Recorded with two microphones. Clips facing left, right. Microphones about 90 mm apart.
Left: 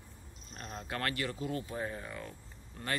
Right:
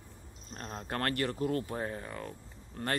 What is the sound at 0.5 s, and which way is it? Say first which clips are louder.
Speech: right 3 dB; 40° right (ahead or behind).